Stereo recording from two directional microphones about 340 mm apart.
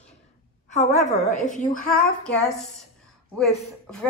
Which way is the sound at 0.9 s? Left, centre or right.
Centre.